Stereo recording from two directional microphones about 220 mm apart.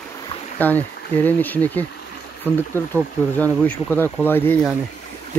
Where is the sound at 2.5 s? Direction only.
10° right (ahead or behind).